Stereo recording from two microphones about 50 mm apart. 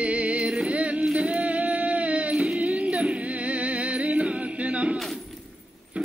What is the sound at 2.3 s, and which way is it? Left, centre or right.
Music, right.